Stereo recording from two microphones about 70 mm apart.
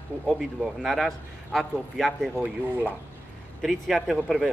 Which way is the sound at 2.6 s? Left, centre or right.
Right.